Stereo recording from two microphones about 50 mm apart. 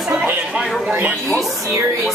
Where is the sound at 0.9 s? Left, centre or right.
Right.